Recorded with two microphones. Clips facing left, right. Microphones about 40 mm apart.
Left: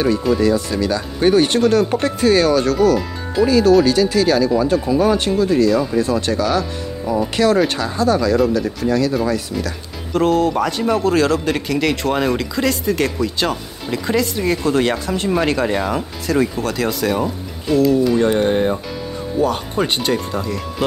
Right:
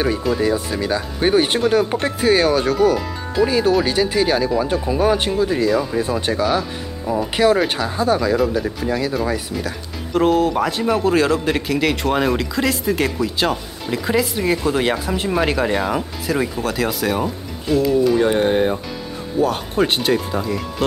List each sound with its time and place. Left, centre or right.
0.4 s speech: centre